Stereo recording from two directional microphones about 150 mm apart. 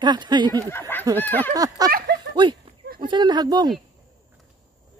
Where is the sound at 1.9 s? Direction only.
80° right.